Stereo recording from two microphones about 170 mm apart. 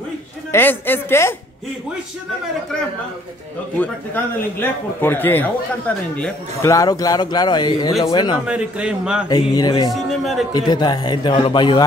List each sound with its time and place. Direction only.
0.5 s a man's voice: 10° left (ahead or behind)
3.7 s a man's voice: 10° left (ahead or behind)
6.7 s speech: 20° left (ahead or behind)
8.5 s a man's voice: 5° right (ahead or behind)
9.3 s speech: 25° left (ahead or behind)